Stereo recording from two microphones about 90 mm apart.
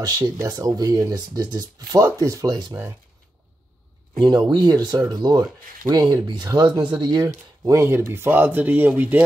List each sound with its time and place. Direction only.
0.0 s speech: 40° right (ahead or behind)
4.2 s speech: 50° right (ahead or behind)
6.5 s speech: 40° right (ahead or behind)
6.8 s speech: 55° right (ahead or behind)
7.8 s speech: 25° right (ahead or behind)